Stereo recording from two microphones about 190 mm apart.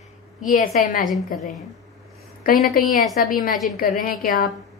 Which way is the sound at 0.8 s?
45° left (ahead or behind).